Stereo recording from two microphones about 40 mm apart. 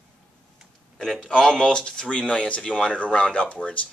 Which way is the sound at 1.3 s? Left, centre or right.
Centre.